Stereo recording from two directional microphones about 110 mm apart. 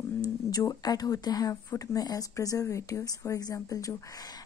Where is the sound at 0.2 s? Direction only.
35° left (ahead or behind).